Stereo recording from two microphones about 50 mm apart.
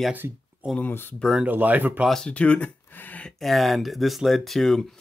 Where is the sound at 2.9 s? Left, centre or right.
Left.